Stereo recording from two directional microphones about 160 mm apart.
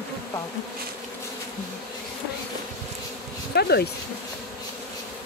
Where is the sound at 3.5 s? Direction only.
90° left.